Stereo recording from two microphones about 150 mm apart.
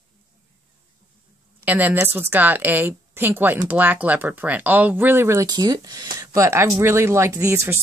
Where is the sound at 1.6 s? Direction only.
10° right (ahead or behind).